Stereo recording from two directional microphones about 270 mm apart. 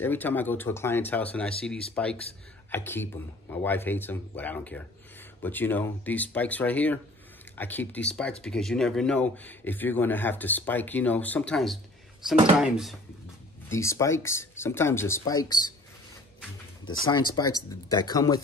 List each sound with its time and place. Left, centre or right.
0.0 s speech: centre
13.7 s speech: centre
16.8 s speech: centre